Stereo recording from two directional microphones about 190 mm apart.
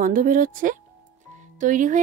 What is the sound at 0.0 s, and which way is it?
Speech, 45° right (ahead or behind).